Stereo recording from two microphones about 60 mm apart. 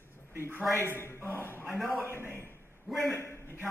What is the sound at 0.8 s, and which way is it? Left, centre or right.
Speech, left.